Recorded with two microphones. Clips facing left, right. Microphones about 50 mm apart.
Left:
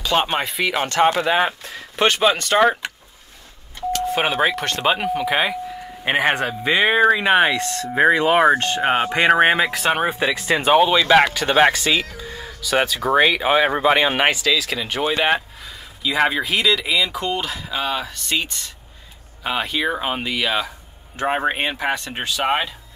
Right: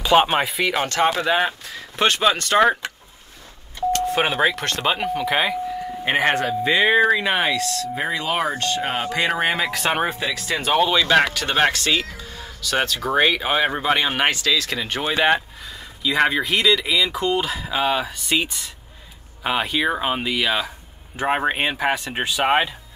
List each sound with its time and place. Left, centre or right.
0.0 s speech: centre
3.9 s speech: centre; by 9.7 s left
9.7 s speech: centre
10.1 s speech: left; by 22.8 s centre